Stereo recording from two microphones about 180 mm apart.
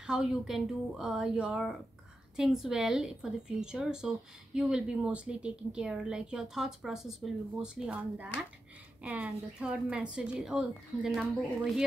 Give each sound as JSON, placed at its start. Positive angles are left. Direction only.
{"t": 0.0, "sound": "a woman's voice", "side_deg": -5}